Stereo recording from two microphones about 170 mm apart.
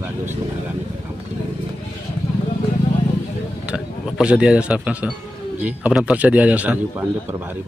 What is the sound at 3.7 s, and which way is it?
A man's voice, 5° right (ahead or behind).